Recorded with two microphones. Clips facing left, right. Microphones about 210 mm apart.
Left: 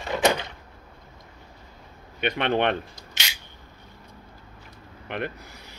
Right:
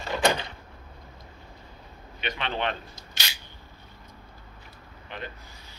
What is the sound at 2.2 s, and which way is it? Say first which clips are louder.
Speech: left 7 dB; 60° left (ahead or behind).